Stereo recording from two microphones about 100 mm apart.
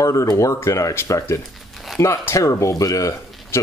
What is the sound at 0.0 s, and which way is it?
Speech, 30° left (ahead or behind).